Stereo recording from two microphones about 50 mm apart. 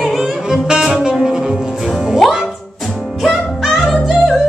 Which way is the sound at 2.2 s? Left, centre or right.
Centre.